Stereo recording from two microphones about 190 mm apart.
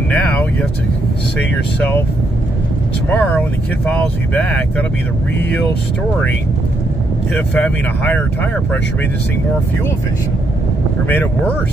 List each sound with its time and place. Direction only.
0.1 s speech: 10° left (ahead or behind)
1.8 s speech: 10° left (ahead or behind)
3.1 s speech: 10° left (ahead or behind)
7.3 s speech: 10° left (ahead or behind)
11.1 s speech: 10° left (ahead or behind)